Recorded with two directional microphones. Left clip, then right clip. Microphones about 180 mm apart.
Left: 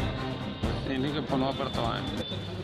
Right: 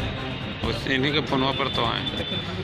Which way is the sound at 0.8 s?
40° left (ahead or behind).